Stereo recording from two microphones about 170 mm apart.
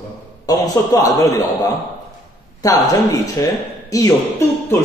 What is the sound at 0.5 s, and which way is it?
A man's voice, 20° left (ahead or behind).